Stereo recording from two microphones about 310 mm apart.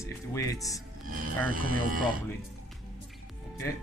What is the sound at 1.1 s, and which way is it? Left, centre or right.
Speech, right.